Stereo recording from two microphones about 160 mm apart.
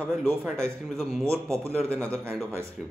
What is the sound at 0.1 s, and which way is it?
A man's voice, centre (ahead or behind).